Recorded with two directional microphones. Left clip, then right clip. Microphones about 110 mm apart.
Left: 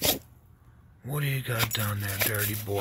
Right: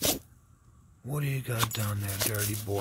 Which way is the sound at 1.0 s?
30° right (ahead or behind).